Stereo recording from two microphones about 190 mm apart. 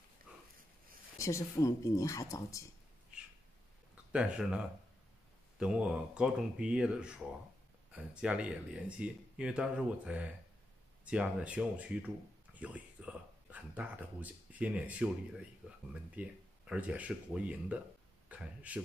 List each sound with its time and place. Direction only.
0.3 s a sound: 5° right (ahead or behind)
1.1 s speech: 15° left (ahead or behind)
4.1 s speech: 5° right (ahead or behind)
5.6 s speech: 5° right (ahead or behind)